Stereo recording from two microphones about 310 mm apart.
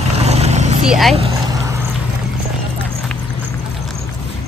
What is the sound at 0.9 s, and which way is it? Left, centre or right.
Speech, centre.